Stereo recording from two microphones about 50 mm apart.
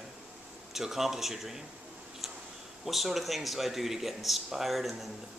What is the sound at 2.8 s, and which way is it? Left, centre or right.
Speech, centre.